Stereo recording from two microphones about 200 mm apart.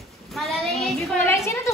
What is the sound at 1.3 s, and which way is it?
Speech, 15° left (ahead or behind).